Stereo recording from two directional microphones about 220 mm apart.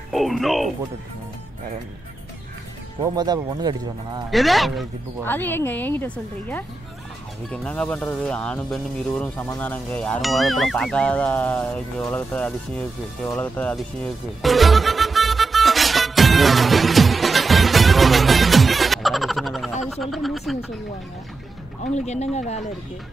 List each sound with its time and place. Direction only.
0.1 s speech: centre (ahead or behind)
3.2 s speech: 20° right (ahead or behind)
4.3 s speech: centre (ahead or behind)
13.3 s music: 5° left (ahead or behind)
19.8 s a sound: centre (ahead or behind)
21.9 s speech: 30° left (ahead or behind)